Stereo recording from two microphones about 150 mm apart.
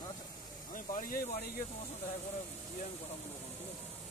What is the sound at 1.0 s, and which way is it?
Speech, 75° left (ahead or behind).